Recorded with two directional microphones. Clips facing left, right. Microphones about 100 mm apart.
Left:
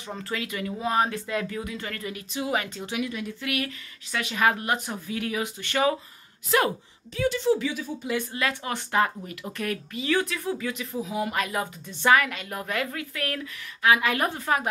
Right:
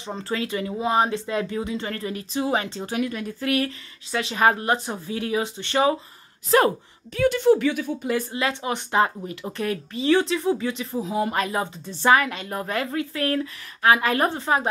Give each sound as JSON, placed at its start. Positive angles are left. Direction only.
{"t": 0.0, "sound": "speech", "side_deg": -30}
{"t": 2.9, "sound": "speech", "side_deg": -45}
{"t": 7.2, "sound": "speech", "side_deg": -55}
{"t": 8.3, "sound": "speech", "side_deg": -25}